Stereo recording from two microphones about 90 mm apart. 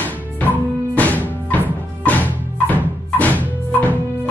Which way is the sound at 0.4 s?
15° left (ahead or behind).